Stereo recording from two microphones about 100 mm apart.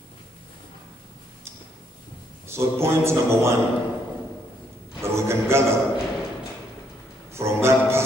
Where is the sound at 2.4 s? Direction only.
25° right (ahead or behind).